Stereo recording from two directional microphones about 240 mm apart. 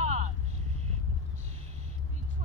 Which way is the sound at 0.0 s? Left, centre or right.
Right.